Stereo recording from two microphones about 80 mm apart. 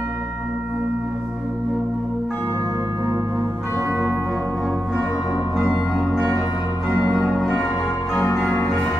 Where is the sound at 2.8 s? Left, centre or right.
Right.